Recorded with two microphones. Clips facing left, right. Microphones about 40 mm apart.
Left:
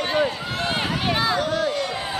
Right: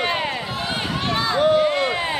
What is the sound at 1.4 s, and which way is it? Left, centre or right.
Run, right.